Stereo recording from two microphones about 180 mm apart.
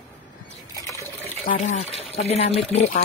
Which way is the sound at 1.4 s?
45° left (ahead or behind).